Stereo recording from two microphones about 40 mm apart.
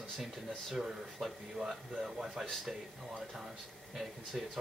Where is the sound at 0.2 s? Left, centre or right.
Centre.